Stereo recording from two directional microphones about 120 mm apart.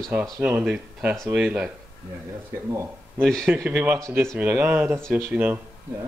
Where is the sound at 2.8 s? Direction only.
15° right (ahead or behind).